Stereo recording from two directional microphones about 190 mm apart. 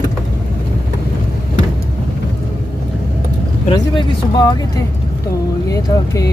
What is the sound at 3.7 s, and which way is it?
Speech, 20° left (ahead or behind).